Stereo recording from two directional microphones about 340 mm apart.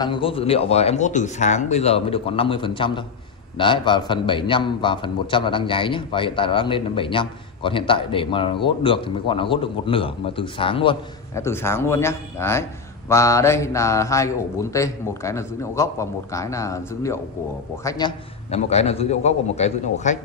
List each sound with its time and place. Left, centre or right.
0.0 s a man's voice: centre